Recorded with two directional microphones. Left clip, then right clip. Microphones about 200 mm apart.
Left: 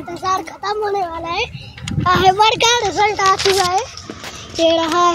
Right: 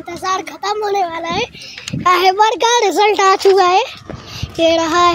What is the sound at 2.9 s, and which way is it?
Speech, 30° right (ahead or behind).